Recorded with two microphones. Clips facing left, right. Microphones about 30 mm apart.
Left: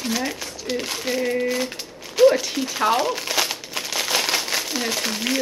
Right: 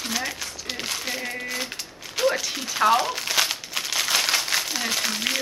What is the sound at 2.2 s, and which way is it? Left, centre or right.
Crumpling, centre.